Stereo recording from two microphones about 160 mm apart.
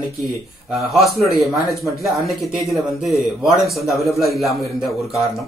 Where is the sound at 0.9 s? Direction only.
Centre (ahead or behind).